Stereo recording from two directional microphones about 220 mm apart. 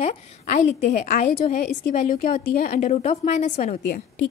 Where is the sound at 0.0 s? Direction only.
30° left (ahead or behind).